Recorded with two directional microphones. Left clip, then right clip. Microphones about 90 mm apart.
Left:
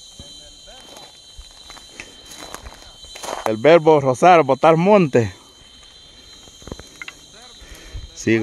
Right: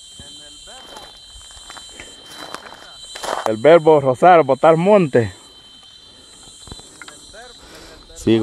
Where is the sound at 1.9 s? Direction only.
25° left (ahead or behind).